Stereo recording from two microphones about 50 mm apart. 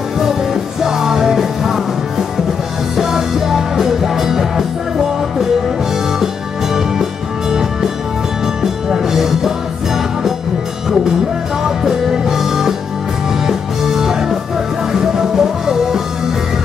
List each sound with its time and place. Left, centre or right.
0.8 s music: centre
6.1 s music: centre
11.6 s music: centre